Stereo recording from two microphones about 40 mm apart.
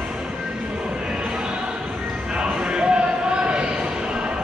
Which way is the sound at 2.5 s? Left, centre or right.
Right.